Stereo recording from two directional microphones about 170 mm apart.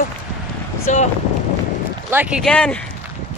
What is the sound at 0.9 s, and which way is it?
Speech, 45° left (ahead or behind).